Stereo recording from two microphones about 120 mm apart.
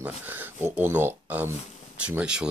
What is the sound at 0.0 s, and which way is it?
Speech, 15° right (ahead or behind).